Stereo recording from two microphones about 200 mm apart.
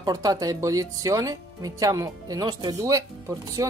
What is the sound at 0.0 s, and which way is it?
Speech, 20° right (ahead or behind).